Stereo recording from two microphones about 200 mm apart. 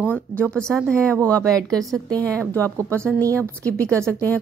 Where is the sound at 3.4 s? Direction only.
10° left (ahead or behind).